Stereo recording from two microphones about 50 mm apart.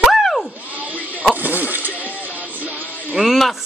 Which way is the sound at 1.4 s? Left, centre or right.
Right.